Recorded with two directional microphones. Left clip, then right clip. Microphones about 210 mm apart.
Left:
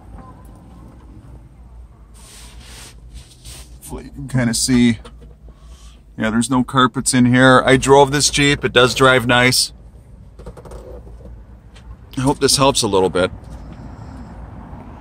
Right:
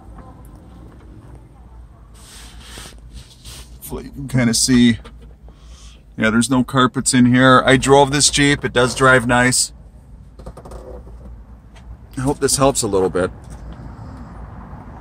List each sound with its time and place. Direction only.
3.8 s speech: 30° right (ahead or behind); by 5.0 s centre (ahead or behind)
6.1 s speech: 10° right (ahead or behind)
7.0 s speech: centre (ahead or behind)
8.8 s speech: 20° left (ahead or behind)
12.2 s speech: 15° left (ahead or behind)